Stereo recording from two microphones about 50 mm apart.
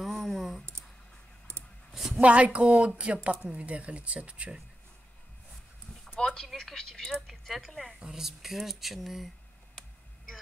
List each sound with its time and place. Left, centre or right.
0.0 s a sound: centre
2.1 s speech: right
6.1 s speech: centre
9.8 s computer keyboard: centre